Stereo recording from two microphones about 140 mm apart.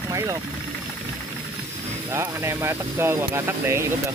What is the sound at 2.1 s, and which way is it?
Speech, 20° right (ahead or behind).